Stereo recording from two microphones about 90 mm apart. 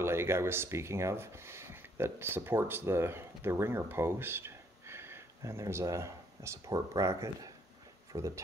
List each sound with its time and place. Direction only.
0.0 s speech: 30° right (ahead or behind)